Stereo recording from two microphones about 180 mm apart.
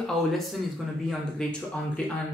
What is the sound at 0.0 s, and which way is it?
Speech, centre (ahead or behind).